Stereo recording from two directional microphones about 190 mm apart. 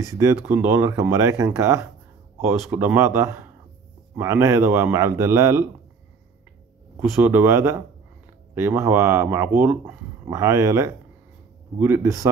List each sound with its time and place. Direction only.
0.0 s speech: 15° right (ahead or behind)
7.0 s speech: 10° right (ahead or behind)